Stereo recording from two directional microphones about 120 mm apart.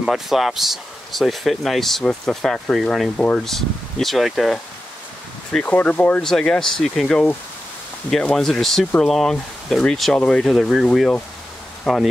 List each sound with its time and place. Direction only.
0.0 s speech: centre (ahead or behind)
5.5 s speech: 10° left (ahead or behind)